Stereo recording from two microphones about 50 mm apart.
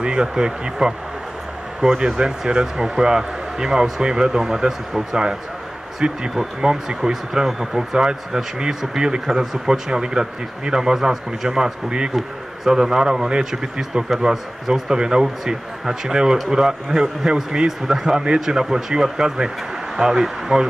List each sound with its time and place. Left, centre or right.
0.0 s speech: centre
2.1 s speech: centre